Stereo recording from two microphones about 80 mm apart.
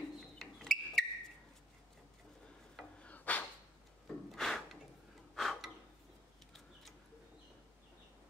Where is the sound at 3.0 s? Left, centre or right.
Centre.